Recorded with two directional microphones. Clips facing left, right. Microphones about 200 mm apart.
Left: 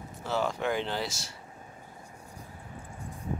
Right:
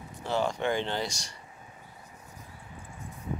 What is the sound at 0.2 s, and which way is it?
Speech, centre (ahead or behind).